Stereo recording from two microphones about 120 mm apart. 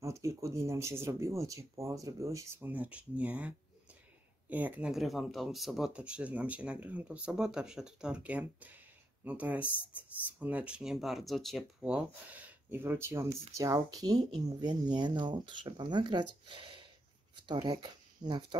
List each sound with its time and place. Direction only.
0.0 s speech: 25° right (ahead or behind)